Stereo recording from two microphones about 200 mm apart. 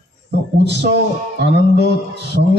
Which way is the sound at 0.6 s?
60° right (ahead or behind).